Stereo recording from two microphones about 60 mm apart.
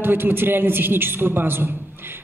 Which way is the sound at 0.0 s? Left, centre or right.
Right.